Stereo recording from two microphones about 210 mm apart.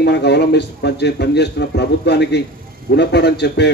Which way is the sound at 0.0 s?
55° left (ahead or behind).